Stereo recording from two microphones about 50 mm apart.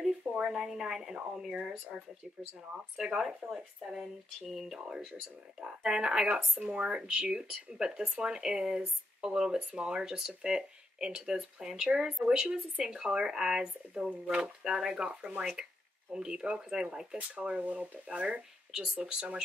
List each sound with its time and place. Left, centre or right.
0.4 s speech: centre
3.0 s speech: centre